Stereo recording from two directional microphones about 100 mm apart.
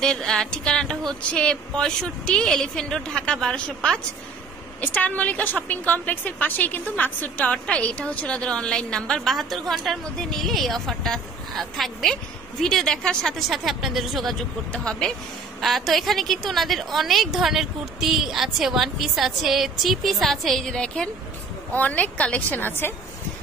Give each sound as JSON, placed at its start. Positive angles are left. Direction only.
{"t": 0.0, "sound": "a woman's voice", "side_deg": 5}